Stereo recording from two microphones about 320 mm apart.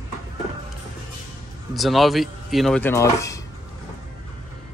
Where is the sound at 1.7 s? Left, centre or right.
Centre.